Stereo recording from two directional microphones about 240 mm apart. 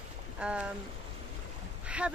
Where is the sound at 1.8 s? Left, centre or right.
Centre.